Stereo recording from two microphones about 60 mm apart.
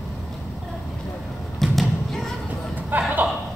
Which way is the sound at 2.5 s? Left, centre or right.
Right.